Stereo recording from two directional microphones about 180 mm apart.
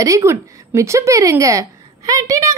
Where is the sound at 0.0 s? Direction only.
15° right (ahead or behind).